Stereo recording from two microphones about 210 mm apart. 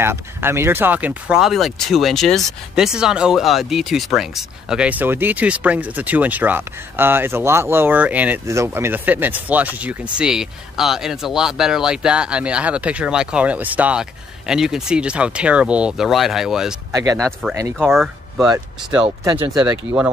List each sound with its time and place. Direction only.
0.0 s speech: 10° right (ahead or behind)
16.9 s speech: 15° right (ahead or behind)
17.7 s speech: centre (ahead or behind)
19.7 s speech: 5° right (ahead or behind)